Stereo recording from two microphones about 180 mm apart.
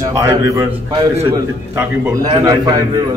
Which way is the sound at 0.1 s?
15° right (ahead or behind).